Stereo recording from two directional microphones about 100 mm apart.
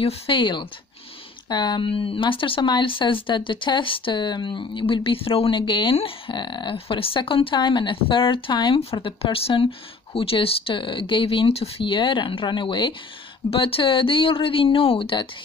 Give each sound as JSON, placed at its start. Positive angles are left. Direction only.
{"t": 0.0, "sound": "speech", "side_deg": 55}
{"t": 1.9, "sound": "speech", "side_deg": 65}
{"t": 8.7, "sound": "speech", "side_deg": 70}
{"t": 13.5, "sound": "speech", "side_deg": 65}